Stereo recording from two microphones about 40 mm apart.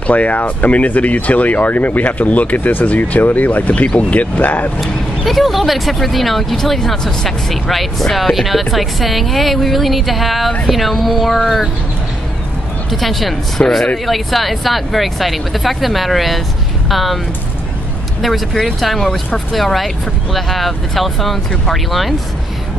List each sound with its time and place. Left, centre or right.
0.0 s speech: left
4.7 s speech: centre
12.9 s speech: centre
18.2 s speech: centre